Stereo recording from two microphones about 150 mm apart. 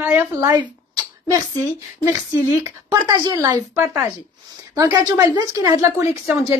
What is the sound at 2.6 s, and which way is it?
Speech, 25° right (ahead or behind).